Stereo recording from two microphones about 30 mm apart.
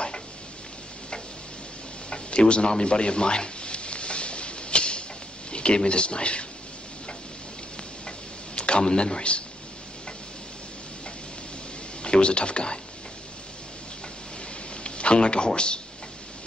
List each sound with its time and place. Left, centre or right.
2.0 s a sound: left
5.9 s speech: left
8.5 s a man's voice: left
12.0 s speech: left
14.8 s a man's voice: left